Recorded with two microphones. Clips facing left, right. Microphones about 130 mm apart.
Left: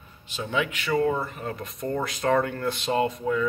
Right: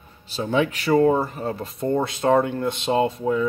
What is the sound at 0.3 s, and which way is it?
Speech, 35° right (ahead or behind).